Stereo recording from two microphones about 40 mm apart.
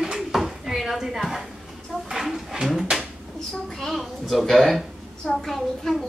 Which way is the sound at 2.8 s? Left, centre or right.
Centre.